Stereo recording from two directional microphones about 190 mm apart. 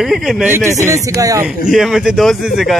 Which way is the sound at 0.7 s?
15° right (ahead or behind).